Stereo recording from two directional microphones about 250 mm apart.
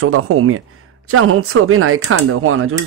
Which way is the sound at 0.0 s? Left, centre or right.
Right.